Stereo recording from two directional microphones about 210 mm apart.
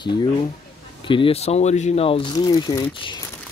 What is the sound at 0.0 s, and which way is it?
Speech, 20° left (ahead or behind).